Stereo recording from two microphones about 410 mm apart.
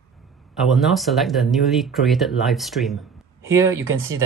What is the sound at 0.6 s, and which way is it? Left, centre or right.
Speech, centre.